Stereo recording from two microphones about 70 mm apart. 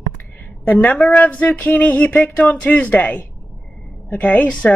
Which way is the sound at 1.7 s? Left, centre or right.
Centre.